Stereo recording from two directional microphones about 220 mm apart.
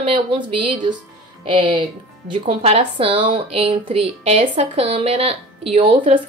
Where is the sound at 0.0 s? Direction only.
25° right (ahead or behind).